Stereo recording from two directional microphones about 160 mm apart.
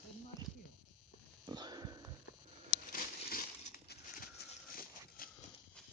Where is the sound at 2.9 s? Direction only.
60° left (ahead or behind).